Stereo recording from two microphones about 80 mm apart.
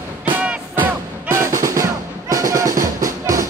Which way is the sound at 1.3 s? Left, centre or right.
Right.